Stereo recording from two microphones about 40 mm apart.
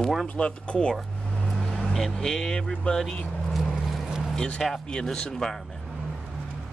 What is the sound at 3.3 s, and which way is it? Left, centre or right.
Vehicle, centre.